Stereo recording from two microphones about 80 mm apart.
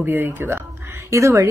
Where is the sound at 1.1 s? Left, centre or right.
Right.